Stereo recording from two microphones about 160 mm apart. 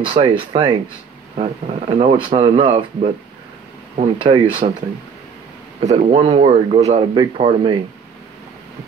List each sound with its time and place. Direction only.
0.0 s speech: 35° right (ahead or behind)
5.8 s speech: 45° right (ahead or behind)